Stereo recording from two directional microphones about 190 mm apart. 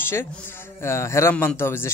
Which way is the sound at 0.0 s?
10° left (ahead or behind).